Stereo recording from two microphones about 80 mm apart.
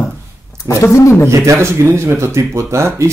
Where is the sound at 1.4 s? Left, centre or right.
Right.